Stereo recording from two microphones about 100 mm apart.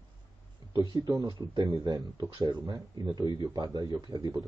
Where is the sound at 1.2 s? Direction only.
50° right (ahead or behind).